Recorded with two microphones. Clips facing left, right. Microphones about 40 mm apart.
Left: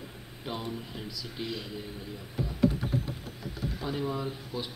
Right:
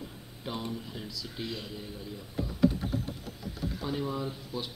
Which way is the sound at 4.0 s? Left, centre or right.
Centre.